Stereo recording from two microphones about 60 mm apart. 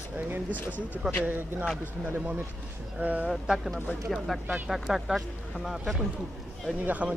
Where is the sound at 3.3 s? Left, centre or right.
Centre.